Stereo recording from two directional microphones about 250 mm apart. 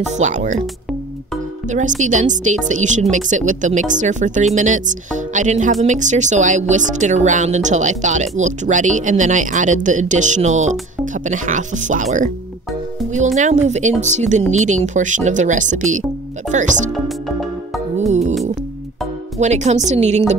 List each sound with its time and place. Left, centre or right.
0.1 s speech: right
2.0 s speech: right
17.9 s music: right
19.3 s speech: right